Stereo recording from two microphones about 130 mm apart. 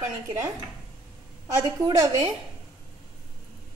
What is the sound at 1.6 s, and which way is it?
Speech, 30° right (ahead or behind).